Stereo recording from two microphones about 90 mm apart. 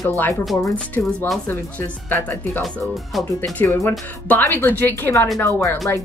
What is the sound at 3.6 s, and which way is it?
Speech, 25° left (ahead or behind).